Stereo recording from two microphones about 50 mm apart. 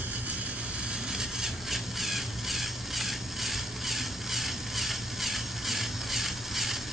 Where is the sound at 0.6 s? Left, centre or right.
Right.